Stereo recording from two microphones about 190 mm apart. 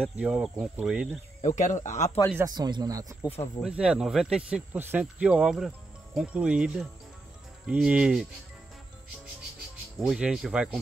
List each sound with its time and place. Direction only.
0.0 s speech: 5° right (ahead or behind)
1.4 s speech: 35° left (ahead or behind)
2.3 s speech: 20° right (ahead or behind)
3.6 s speech: 5° right (ahead or behind)
9.9 s speech: 5° right (ahead or behind)